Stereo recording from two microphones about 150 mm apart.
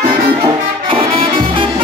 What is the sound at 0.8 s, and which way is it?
Music, 40° right (ahead or behind).